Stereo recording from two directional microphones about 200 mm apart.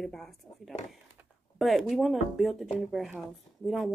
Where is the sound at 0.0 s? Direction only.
Centre (ahead or behind).